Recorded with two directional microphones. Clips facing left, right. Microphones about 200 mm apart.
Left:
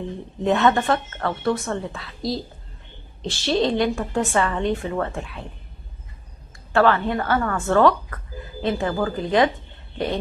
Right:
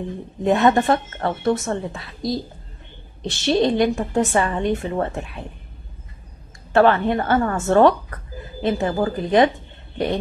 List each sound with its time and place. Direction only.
0.4 s a woman's voice: 15° right (ahead or behind)
6.7 s a woman's voice: 20° right (ahead or behind)